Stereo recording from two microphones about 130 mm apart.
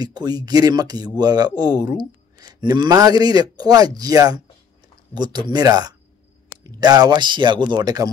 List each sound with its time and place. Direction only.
0.0 s speech: 30° right (ahead or behind)